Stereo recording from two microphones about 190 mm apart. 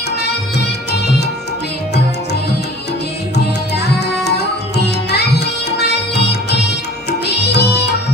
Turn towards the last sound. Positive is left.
turn(degrees=60)  # may be behind; listen again after turning